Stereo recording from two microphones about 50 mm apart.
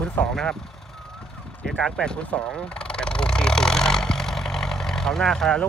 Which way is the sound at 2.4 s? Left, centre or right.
Centre.